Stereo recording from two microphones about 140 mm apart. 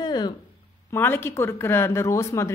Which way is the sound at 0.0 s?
30° left (ahead or behind).